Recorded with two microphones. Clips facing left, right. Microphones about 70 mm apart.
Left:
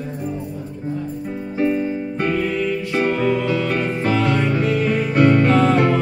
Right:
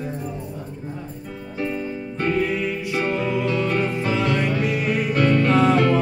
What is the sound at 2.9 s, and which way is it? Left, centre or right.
Music, left.